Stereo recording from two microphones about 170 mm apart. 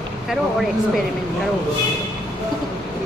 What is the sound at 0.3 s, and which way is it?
Speech, centre (ahead or behind).